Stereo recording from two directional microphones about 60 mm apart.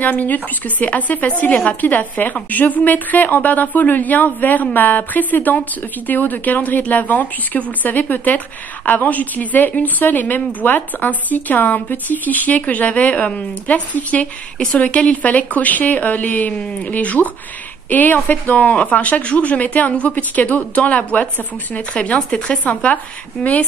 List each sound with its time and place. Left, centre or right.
0.0 s speech: left
23.4 s a woman's voice: centre